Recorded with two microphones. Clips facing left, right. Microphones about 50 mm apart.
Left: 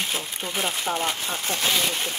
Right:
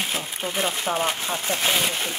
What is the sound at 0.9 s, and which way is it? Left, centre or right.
Speech, right.